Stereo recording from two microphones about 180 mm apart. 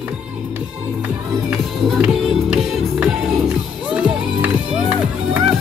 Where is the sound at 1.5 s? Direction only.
5° right (ahead or behind).